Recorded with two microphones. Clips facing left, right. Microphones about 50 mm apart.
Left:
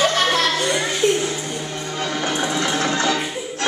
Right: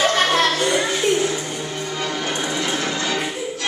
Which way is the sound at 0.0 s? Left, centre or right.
Right.